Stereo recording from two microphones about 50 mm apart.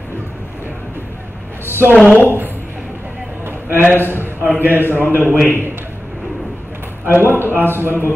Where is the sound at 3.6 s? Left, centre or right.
Right.